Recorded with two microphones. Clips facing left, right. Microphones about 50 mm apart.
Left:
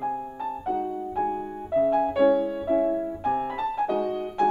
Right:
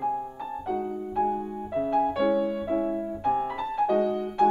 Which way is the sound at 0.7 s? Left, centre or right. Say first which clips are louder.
Even; centre.